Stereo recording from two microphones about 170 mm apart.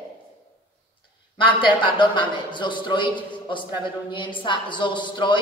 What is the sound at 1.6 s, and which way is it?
A man's voice, 30° left (ahead or behind).